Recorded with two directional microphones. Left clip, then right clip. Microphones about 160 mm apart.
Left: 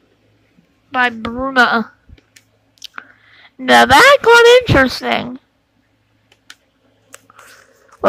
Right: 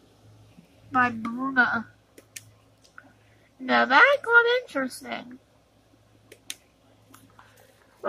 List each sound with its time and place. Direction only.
0.9 s a woman's voice: 25° left (ahead or behind)
1.3 s speech: 35° left (ahead or behind)
3.6 s speech: 35° left (ahead or behind)